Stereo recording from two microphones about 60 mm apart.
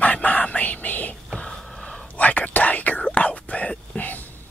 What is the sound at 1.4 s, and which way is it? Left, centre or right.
Whispering, centre.